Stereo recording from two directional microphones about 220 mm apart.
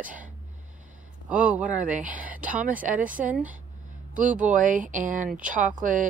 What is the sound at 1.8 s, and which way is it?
Speech, 35° right (ahead or behind).